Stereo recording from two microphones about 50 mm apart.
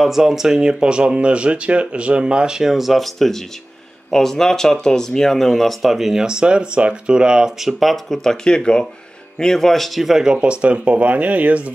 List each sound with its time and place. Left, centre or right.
0.0 s speech: centre
6.2 s speech: centre